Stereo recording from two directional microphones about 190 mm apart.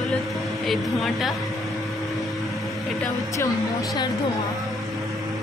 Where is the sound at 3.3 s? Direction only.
20° left (ahead or behind).